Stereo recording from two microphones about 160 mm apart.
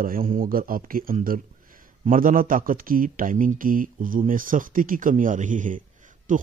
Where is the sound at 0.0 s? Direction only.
60° right (ahead or behind).